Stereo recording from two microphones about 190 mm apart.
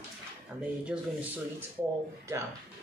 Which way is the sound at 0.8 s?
5° right (ahead or behind).